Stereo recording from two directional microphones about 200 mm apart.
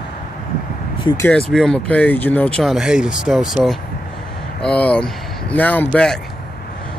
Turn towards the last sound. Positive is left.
turn(degrees=10)  # may be behind; listen again after turning